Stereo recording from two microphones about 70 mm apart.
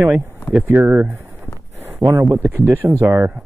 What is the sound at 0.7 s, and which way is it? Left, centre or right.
Speech, right.